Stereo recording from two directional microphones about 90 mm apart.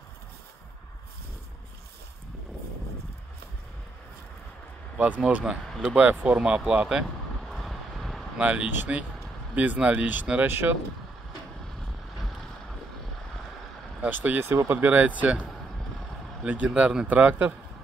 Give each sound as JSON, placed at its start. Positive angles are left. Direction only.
{"t": 5.2, "sound": "speech", "side_deg": -10}
{"t": 5.9, "sound": "vehicle", "side_deg": -15}
{"t": 8.4, "sound": "speech", "side_deg": -15}
{"t": 12.2, "sound": "boat", "side_deg": 5}
{"t": 14.0, "sound": "speech", "side_deg": -20}
{"t": 16.4, "sound": "speech", "side_deg": -15}